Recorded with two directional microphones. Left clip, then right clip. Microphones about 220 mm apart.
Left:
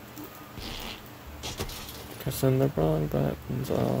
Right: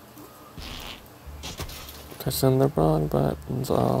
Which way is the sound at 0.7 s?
Centre (ahead or behind).